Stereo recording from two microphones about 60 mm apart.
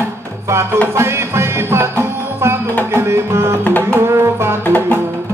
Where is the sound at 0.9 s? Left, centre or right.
Right.